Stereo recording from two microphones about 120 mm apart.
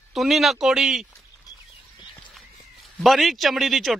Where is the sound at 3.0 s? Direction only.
Centre (ahead or behind).